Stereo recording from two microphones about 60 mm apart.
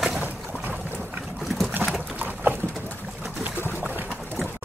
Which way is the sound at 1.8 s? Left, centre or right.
Right.